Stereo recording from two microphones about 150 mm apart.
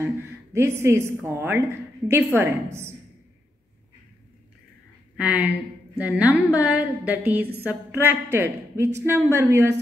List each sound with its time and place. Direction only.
0.0 s a woman's voice: 15° right (ahead or behind)
5.1 s a woman's voice: 10° right (ahead or behind)